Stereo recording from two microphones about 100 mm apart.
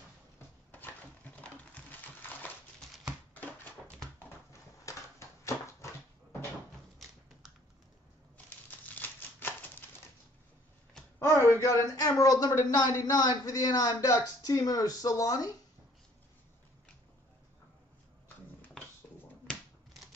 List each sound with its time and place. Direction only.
0.7 s a sound: 20° left (ahead or behind)
3.3 s dog: 20° left (ahead or behind)
4.9 s a sound: 35° left (ahead or behind)
5.4 s dog: 30° left (ahead or behind)
8.5 s typewriter: 15° left (ahead or behind)
11.1 s speech: 30° left (ahead or behind)